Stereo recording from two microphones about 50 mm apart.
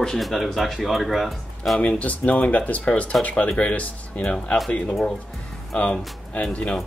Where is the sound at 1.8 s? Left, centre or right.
Left.